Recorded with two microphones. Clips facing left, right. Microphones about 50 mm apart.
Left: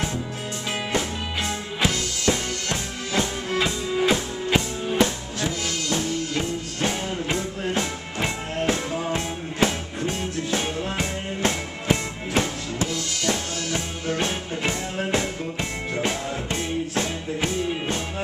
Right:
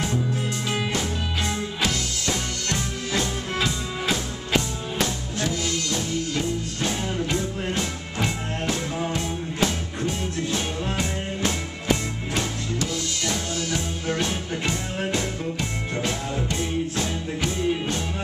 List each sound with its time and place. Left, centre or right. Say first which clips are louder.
0.7 s music: even; centre
3.5 s music: left 5 dB; centre
16.0 s music: left 1 dB; left